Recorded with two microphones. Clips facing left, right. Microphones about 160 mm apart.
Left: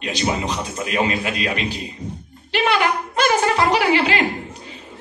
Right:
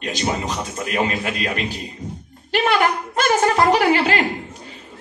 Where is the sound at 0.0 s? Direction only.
45° right (ahead or behind).